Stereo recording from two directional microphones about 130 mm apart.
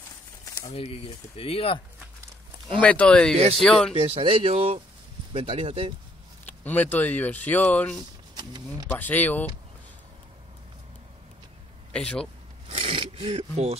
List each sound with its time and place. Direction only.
0.7 s speech: 50° left (ahead or behind)
2.8 s speech: 10° left (ahead or behind)
3.9 s speech: 45° right (ahead or behind)
6.4 s speech: 15° left (ahead or behind)
8.4 s speech: 35° right (ahead or behind)
8.8 s speech: 15° left (ahead or behind)
11.9 s speech: 5° left (ahead or behind)
12.6 s a sound: 45° right (ahead or behind)